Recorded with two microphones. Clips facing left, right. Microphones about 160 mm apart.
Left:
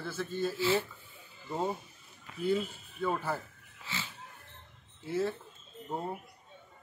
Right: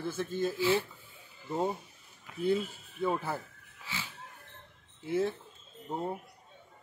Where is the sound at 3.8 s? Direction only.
10° right (ahead or behind).